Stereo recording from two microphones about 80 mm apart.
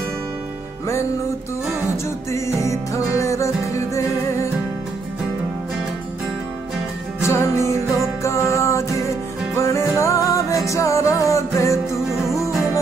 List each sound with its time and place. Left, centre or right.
2.3 s music: left
7.2 s music: left